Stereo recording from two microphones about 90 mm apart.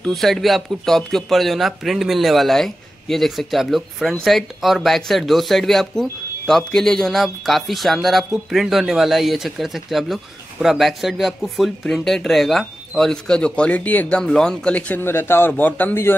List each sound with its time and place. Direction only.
0.0 s a man's voice: 5° left (ahead or behind); by 16.2 s 25° left (ahead or behind)